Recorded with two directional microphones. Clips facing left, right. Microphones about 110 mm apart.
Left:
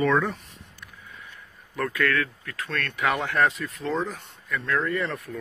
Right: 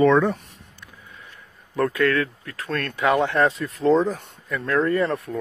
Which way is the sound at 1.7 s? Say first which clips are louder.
Right 5 dB; 30° right (ahead or behind).